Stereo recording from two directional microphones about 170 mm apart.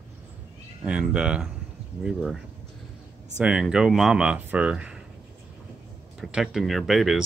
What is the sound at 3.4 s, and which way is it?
Speech, 5° right (ahead or behind).